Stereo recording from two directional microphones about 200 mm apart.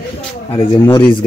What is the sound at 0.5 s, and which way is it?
Speech, 25° left (ahead or behind).